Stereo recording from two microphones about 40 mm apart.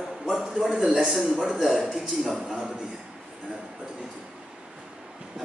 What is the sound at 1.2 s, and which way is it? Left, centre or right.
Speech, centre.